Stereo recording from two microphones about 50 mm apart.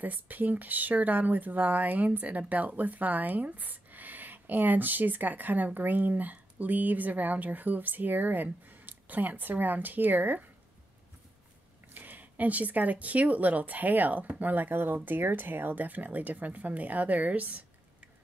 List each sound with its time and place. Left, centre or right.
0.0 s speech: right
11.9 s speech: right